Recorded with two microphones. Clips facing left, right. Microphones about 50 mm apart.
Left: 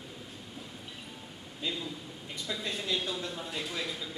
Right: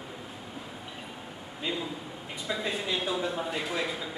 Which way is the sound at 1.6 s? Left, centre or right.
Centre.